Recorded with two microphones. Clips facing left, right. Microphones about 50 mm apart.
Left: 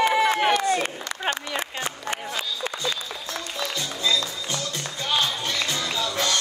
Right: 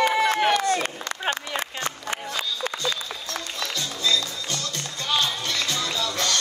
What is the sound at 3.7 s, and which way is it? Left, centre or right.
Music, centre.